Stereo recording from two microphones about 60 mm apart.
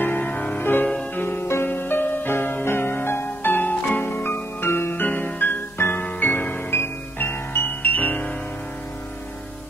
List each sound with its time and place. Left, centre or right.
0.0 s music: left
0.6 s music: left
6.0 s music: left
6.7 s music: left